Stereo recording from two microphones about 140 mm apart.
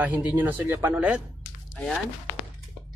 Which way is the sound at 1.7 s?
10° left (ahead or behind).